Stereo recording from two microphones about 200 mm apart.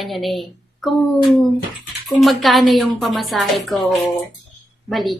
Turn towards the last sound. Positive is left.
turn(degrees=0)  # may be behind; listen again after turning